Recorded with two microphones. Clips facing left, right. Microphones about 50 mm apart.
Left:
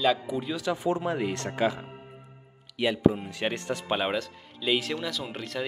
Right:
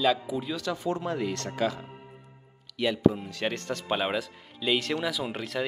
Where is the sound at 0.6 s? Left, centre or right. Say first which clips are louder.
Left 3 dB; centre.